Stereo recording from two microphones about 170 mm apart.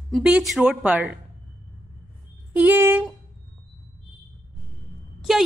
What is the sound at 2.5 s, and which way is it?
Speech, 10° right (ahead or behind).